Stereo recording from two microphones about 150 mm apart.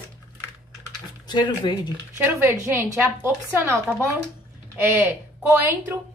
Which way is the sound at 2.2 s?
10° right (ahead or behind).